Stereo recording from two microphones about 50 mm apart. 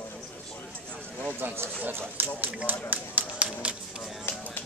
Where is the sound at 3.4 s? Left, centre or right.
Right.